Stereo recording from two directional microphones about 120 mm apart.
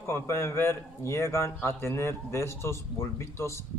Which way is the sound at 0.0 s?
20° left (ahead or behind).